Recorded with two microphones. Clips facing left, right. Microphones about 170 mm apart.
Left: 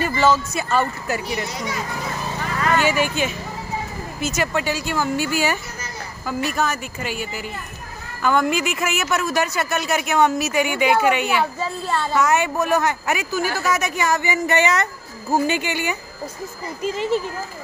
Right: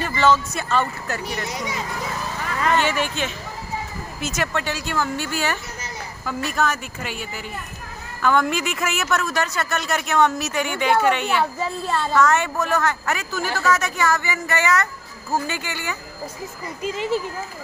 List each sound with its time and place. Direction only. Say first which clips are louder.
0.0 s speech: left 1 dB; 5° left (ahead or behind)
2.7 s a woman's voice: left 3 dB; 5° left (ahead or behind)